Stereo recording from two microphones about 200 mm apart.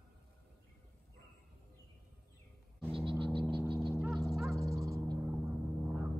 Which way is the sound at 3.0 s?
25° right (ahead or behind).